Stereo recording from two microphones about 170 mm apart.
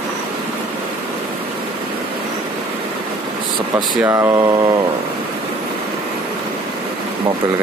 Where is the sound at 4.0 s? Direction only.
20° right (ahead or behind).